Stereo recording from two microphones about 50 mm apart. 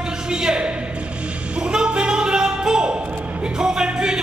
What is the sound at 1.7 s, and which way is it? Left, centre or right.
Music, centre.